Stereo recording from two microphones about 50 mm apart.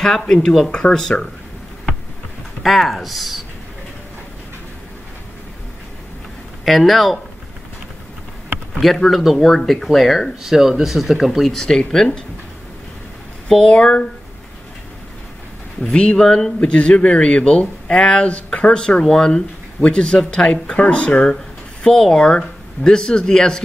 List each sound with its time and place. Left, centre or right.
0.0 s speech: centre
2.6 s speech: centre
6.6 s speech: centre
8.7 s speech: centre
13.5 s speech: centre
15.8 s speech: centre
16.6 s speech: left